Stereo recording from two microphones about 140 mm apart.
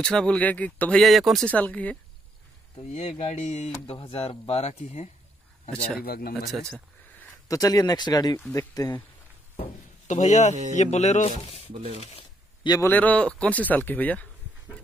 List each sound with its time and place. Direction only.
0.0 s speech: 5° left (ahead or behind)
1.5 s speech: 10° left (ahead or behind)
2.9 s speech: 55° left (ahead or behind)
6.0 s speech: 90° left
6.3 s speech: centre (ahead or behind)
7.4 s speech: 25° left (ahead or behind)
10.0 s speech: 55° left (ahead or behind)
11.7 s speech: 45° right (ahead or behind)
12.0 s speech: 45° left (ahead or behind)
12.8 s speech: 10° left (ahead or behind)